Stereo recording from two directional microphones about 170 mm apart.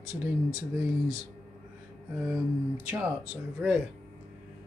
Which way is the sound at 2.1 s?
Centre (ahead or behind).